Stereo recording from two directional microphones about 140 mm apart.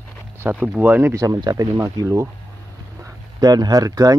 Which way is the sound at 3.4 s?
30° right (ahead or behind).